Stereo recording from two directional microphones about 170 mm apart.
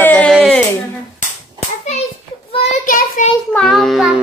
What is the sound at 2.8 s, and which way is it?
Speech, 50° left (ahead or behind).